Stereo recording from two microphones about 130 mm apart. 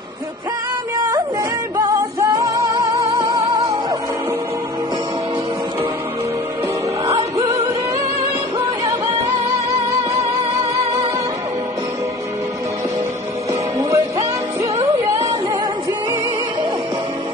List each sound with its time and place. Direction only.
1.8 s music: 30° right (ahead or behind)
7.1 s music: 25° right (ahead or behind)
13.5 s music: 25° right (ahead or behind)